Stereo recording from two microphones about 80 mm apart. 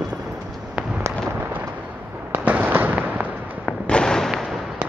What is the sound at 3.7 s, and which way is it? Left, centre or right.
Fireworks, centre.